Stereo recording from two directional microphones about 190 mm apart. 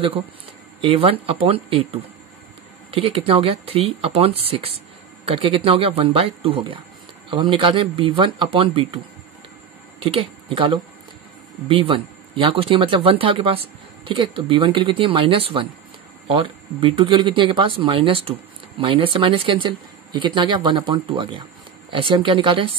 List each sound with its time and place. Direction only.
0.7 s speech: 30° right (ahead or behind)